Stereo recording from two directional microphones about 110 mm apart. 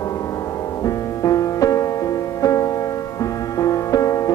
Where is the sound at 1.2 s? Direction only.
30° left (ahead or behind).